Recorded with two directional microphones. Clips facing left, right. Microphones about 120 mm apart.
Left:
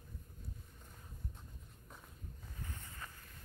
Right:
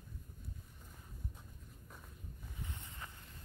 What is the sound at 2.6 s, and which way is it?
Boat, 20° right (ahead or behind).